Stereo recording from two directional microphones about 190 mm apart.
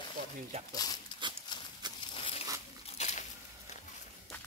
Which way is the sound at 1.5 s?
25° left (ahead or behind).